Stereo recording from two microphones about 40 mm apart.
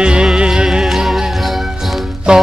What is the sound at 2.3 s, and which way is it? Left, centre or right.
Mantra, centre.